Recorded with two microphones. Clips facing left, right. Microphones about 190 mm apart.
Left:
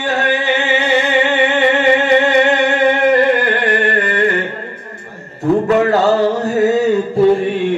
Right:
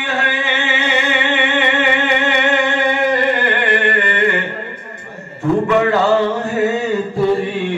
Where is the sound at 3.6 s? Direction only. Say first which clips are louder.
Left 1 dB; 40° left (ahead or behind).